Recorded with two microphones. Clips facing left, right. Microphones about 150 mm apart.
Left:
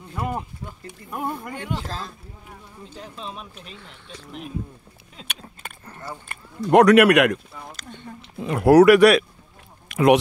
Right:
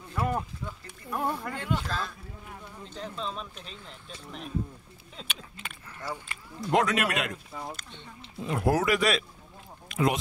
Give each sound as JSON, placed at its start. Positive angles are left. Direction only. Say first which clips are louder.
{"t": 0.1, "sound": "a sound", "louder": "left 1 dB", "side_deg": 20}
{"t": 0.8, "sound": "speech", "louder": "left 2 dB", "side_deg": 15}
{"t": 1.8, "sound": "speech", "louder": "left 1 dB", "side_deg": 35}
{"t": 2.8, "sound": "speech", "louder": "right 1 dB", "side_deg": 10}
{"t": 5.4, "sound": "a sound", "louder": "left 3 dB", "side_deg": 40}
{"t": 6.2, "sound": "speech", "louder": "left 7 dB", "side_deg": 65}
{"t": 7.9, "sound": "speech", "louder": "left 7 dB", "side_deg": 50}
{"t": 8.5, "sound": "speech", "louder": "left 13 dB", "side_deg": 70}
{"t": 9.8, "sound": "a sound", "louder": "left 10 dB", "side_deg": 70}